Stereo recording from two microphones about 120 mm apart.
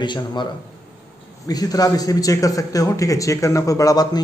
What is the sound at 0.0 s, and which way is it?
Speech, 40° left (ahead or behind).